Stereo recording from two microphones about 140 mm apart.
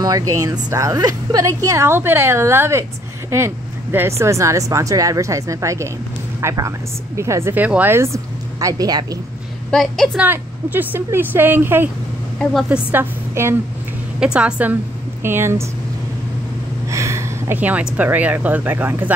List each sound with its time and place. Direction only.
0.0 s a woman's voice: 25° right (ahead or behind)
9.7 s a woman's voice: 5° left (ahead or behind)
10.1 s a woman's voice: 10° right (ahead or behind)
14.2 s a woman's voice: 5° right (ahead or behind)
16.9 s speech: 20° right (ahead or behind)